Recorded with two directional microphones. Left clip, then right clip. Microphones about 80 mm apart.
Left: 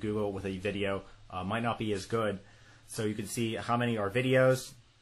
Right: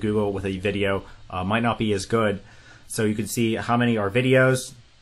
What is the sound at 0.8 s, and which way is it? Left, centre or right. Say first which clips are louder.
Speech: right 9 dB; centre.